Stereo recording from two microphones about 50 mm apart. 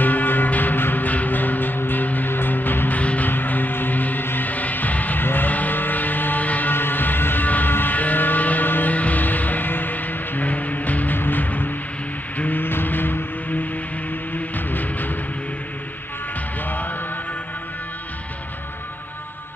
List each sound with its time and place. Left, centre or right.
0.0 s music: left
3.0 s music: left
3.3 s music: left
6.7 s vehicle: left
11.1 s music: left
16.6 s music: left